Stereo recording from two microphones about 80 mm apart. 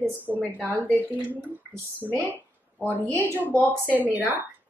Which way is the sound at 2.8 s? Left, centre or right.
Left.